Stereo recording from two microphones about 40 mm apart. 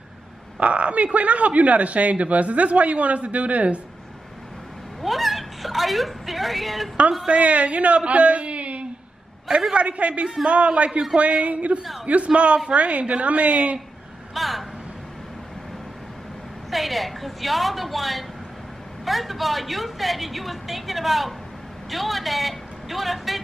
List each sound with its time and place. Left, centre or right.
0.6 s a man's voice: right
5.0 s a sound: centre
7.2 s a man's voice: right
9.5 s a man's voice: centre
9.8 s a man's voice: right
10.2 s a man's voice: centre
10.5 s a man's voice: right
10.9 s a man's voice: centre
11.1 s a man's voice: right
14.3 s vehicle: centre
16.7 s a woman's voice: centre